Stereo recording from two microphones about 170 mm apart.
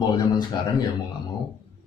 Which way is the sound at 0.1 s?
25° left (ahead or behind).